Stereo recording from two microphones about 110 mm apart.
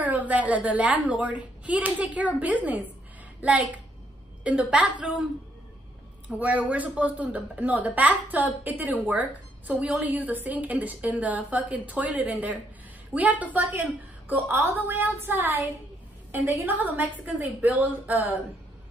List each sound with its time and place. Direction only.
0.0 s a woman's voice: 15° right (ahead or behind)
6.2 s a woman's voice: 15° right (ahead or behind)